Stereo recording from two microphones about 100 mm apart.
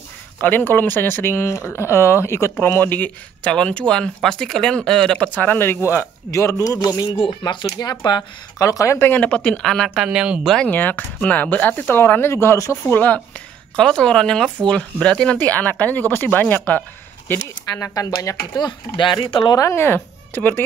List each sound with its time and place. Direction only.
0.4 s speech: 20° left (ahead or behind)
5.3 s speech: 20° left (ahead or behind)
6.3 s a man's voice: 35° left (ahead or behind)
8.5 s speech: 30° left (ahead or behind); by 10.0 s 5° left (ahead or behind)
10.0 s speech: 10° right (ahead or behind)
10.4 s speech: 5° left (ahead or behind)
10.7 s speech: 20° left (ahead or behind)
12.9 s speech: 15° left (ahead or behind)
17.9 s a man's voice: 35° left (ahead or behind)
18.6 s speech: 50° left (ahead or behind)
19.5 s speech: 30° left (ahead or behind)